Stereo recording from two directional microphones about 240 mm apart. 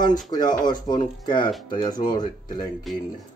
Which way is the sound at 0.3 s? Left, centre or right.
Centre.